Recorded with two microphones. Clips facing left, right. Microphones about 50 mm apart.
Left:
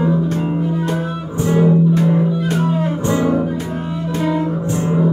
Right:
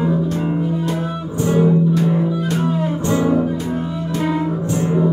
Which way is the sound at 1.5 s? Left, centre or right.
Left.